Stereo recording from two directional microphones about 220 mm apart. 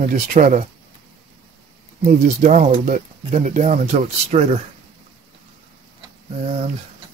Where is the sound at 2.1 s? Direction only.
30° right (ahead or behind).